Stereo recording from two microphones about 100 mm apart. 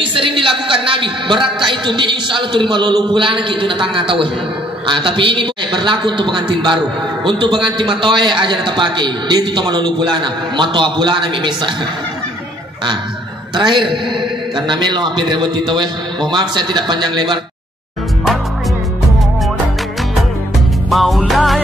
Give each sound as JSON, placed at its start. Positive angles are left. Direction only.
{"t": 0.0, "sound": "a sound", "side_deg": -60}
{"t": 1.7, "sound": "a man's voice", "side_deg": -55}
{"t": 13.6, "sound": "a man's voice", "side_deg": -55}
{"t": 20.9, "sound": "music", "side_deg": 0}